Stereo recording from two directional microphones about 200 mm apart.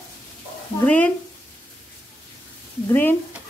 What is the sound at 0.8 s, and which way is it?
Speech, 10° left (ahead or behind).